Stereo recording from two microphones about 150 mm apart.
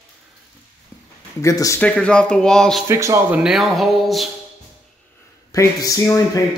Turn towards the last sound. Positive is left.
turn(degrees=20)  # may be behind; listen again after turning